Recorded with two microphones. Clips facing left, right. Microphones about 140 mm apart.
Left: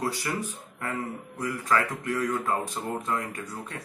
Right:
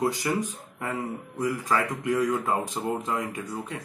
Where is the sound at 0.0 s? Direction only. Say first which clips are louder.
Right 4 dB; 15° right (ahead or behind).